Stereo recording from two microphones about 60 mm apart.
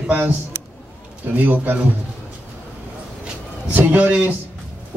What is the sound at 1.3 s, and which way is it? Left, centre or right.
Speech, right.